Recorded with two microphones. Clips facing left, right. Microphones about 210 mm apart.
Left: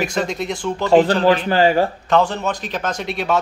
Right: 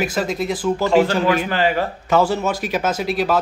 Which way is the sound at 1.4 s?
30° left (ahead or behind).